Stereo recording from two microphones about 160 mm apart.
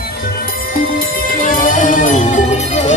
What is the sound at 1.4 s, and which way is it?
Music, 55° left (ahead or behind).